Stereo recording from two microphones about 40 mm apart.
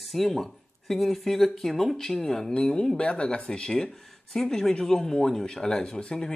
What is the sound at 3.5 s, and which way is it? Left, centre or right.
Speech, centre.